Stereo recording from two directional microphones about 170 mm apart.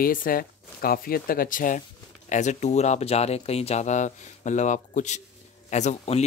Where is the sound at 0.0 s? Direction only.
55° left (ahead or behind).